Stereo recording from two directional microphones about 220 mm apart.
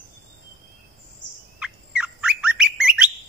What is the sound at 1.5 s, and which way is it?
Bird, 5° right (ahead or behind).